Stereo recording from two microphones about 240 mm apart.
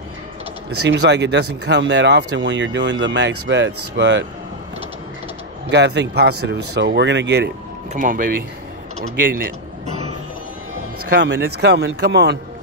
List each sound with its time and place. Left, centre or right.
0.8 s speech: right
5.7 s speech: right
7.9 s speech: right
9.8 s music: right
11.1 s speech: right